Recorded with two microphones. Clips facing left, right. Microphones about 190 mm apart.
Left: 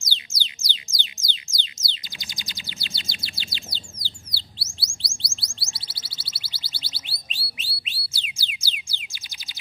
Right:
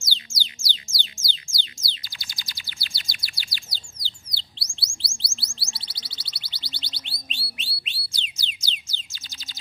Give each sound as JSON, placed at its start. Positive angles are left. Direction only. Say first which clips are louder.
{"t": 0.0, "sound": "music", "louder": "even", "side_deg": 20}
{"t": 4.3, "sound": "chirp", "louder": "left 2 dB", "side_deg": 5}